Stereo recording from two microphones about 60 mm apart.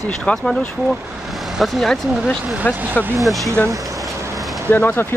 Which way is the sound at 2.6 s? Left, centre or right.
Left.